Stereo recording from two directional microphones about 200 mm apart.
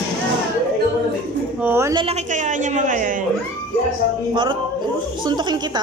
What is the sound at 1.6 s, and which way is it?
Speech, 15° right (ahead or behind).